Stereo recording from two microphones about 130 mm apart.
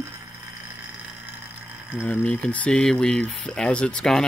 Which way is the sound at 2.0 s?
10° left (ahead or behind).